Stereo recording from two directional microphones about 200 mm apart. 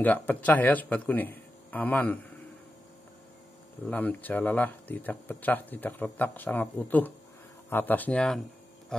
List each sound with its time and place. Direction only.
0.0 s speech: 10° left (ahead or behind)
3.8 s speech: 10° left (ahead or behind)